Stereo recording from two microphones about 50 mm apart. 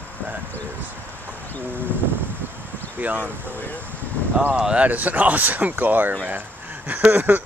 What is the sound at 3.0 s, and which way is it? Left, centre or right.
Speech, right.